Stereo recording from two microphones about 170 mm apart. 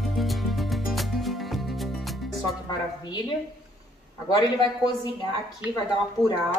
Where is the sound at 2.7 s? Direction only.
25° left (ahead or behind).